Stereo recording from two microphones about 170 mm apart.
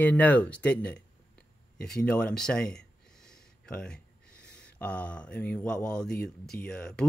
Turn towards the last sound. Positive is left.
turn(degrees=5)  # may be behind; listen again after turning